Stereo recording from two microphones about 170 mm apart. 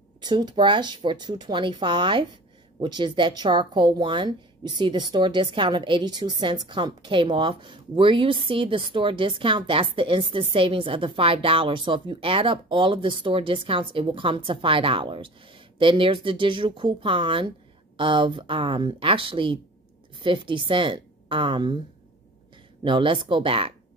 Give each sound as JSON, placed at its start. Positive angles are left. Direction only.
{"t": 0.2, "sound": "a woman's voice", "side_deg": -25}
{"t": 22.8, "sound": "speech", "side_deg": -30}